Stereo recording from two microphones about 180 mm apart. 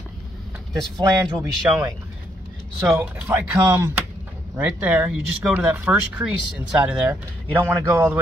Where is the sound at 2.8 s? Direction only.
5° right (ahead or behind).